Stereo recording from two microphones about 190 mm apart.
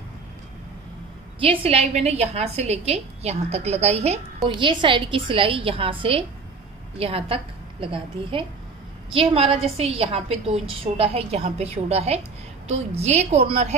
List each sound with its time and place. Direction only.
1.4 s a woman's voice: 30° right (ahead or behind)